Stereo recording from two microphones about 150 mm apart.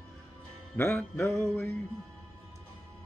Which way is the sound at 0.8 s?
15° left (ahead or behind).